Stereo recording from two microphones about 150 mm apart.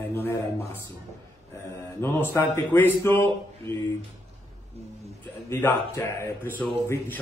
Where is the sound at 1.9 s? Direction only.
15° left (ahead or behind).